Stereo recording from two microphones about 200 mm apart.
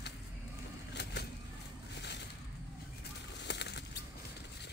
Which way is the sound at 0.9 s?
55° left (ahead or behind).